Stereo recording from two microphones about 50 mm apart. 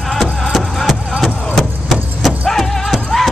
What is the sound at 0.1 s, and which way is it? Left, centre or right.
Music, centre.